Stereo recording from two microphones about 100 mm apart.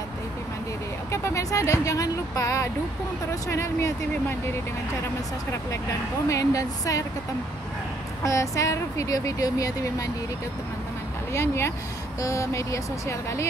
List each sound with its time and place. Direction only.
1.1 s a woman's voice: 30° left (ahead or behind)
6.2 s a woman's voice: 35° left (ahead or behind)
8.2 s a woman's voice: 30° left (ahead or behind)
11.3 s a woman's voice: 25° left (ahead or behind)